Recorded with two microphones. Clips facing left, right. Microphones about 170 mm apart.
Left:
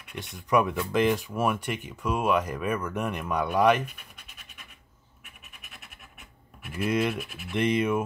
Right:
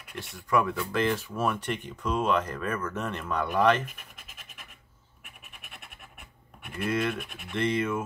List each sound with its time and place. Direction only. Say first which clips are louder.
0.2 s speech: left 2 dB; 20° left (ahead or behind)
3.8 s scratch: left 2 dB; centre (ahead or behind)
6.9 s speech: left 2 dB; 15° left (ahead or behind)
7.2 s speech: left 2 dB; centre (ahead or behind)
7.5 s speech: left 3 dB; 15° left (ahead or behind)